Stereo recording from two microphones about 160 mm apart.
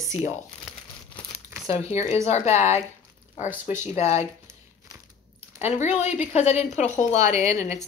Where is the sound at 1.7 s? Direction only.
40° left (ahead or behind).